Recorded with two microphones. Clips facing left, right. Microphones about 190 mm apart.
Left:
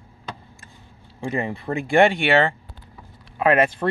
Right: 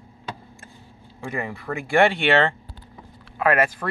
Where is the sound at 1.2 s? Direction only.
25° left (ahead or behind).